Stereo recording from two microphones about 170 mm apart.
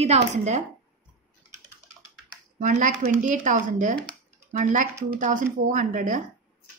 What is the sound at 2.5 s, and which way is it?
A woman's voice, 50° right (ahead or behind).